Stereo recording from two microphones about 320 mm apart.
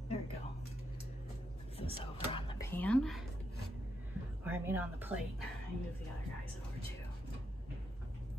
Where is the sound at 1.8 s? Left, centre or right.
Centre.